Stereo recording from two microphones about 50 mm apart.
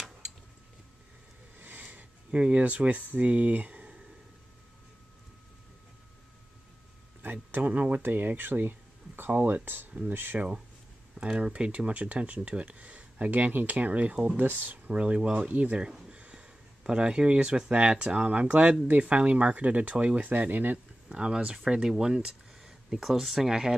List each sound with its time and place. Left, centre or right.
1.6 s a sound: right
7.2 s speech: right
11.1 s speech: right
14.3 s speech: right
14.9 s speech: right
15.4 s speech: right
16.1 s a sound: right
17.6 s speech: right
21.1 s speech: centre